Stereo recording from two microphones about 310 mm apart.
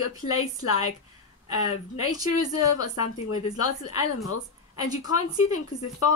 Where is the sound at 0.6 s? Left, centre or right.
Left.